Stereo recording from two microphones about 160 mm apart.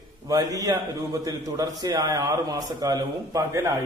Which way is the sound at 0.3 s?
20° right (ahead or behind).